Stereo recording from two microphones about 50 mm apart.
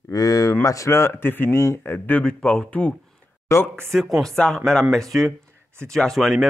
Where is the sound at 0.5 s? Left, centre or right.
Left.